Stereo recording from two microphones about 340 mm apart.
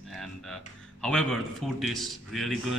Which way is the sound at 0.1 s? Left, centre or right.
Centre.